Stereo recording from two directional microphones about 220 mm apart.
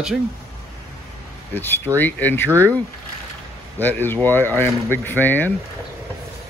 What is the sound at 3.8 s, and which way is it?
Speech, 10° left (ahead or behind).